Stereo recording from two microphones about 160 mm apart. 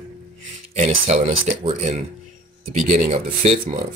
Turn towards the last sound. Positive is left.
turn(degrees=-45)  # may be behind; listen again after turning